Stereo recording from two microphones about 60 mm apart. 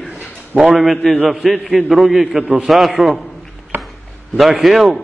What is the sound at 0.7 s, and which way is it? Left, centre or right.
A man's voice, right.